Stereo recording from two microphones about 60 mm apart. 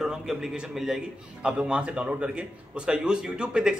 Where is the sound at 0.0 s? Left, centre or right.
Centre.